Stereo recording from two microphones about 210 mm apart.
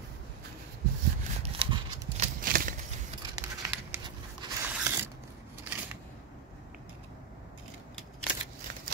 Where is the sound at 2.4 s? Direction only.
45° right (ahead or behind).